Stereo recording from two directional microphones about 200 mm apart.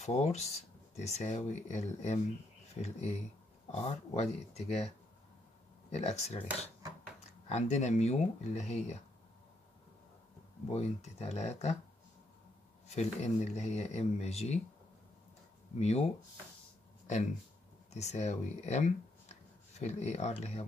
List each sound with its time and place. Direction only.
0.0 s speech: 35° left (ahead or behind)
5.9 s speech: 35° left (ahead or behind)
7.4 s speech: 35° left (ahead or behind)
10.7 s speech: 35° left (ahead or behind)
12.8 s speech: 35° left (ahead or behind)
15.8 s speech: 30° left (ahead or behind)
17.9 s speech: 35° left (ahead or behind)